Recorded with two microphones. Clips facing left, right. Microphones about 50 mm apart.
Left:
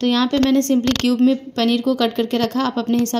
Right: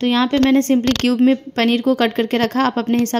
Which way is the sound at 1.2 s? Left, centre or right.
Right.